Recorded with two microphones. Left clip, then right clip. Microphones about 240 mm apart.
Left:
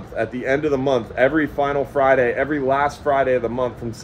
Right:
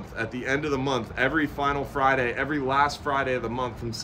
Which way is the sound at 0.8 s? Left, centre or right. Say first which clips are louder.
Left 8 dB; centre.